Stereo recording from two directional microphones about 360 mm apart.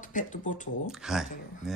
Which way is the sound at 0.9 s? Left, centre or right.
Centre.